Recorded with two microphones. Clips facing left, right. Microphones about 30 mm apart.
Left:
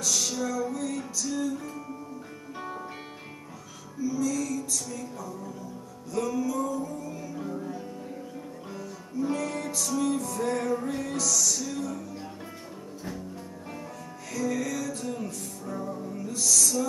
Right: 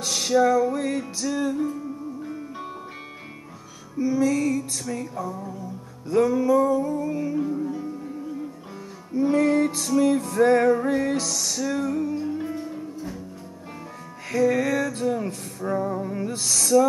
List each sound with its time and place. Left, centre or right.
0.0 s music: right
4.0 s music: right
7.4 s music: centre
9.1 s music: right
12.4 s music: centre
14.3 s music: right